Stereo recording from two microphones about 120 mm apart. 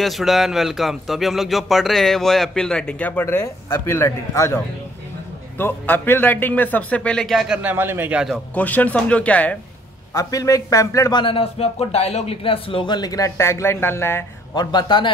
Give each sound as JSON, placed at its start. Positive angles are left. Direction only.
{"t": 0.0, "sound": "a man's voice", "side_deg": 0}
{"t": 5.6, "sound": "a man's voice", "side_deg": 15}
{"t": 7.3, "sound": "a man's voice", "side_deg": -10}
{"t": 8.5, "sound": "a man's voice", "side_deg": 15}
{"t": 10.1, "sound": "a man's voice", "side_deg": 30}
{"t": 11.2, "sound": "speech", "side_deg": 50}
{"t": 14.5, "sound": "speech", "side_deg": 35}